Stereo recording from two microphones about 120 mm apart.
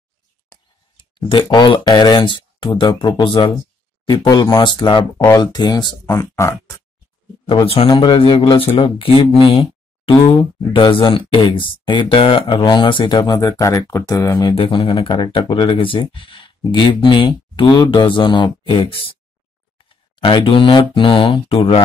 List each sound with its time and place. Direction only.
0.5 s speech: 40° left (ahead or behind)
5.1 s speech: 25° left (ahead or behind)
5.4 s speech: 35° left (ahead or behind)
6.1 s speech: 20° left (ahead or behind)
7.6 s speech: 50° left (ahead or behind); by 14.5 s 30° left (ahead or behind)
14.5 s speech: 50° left (ahead or behind)